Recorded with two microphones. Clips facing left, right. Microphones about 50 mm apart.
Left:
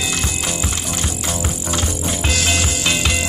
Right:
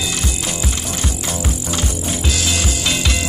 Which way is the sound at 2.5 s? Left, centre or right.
Centre.